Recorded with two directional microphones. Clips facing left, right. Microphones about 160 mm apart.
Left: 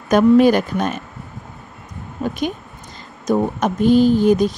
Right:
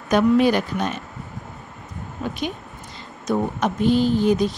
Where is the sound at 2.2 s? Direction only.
40° left (ahead or behind).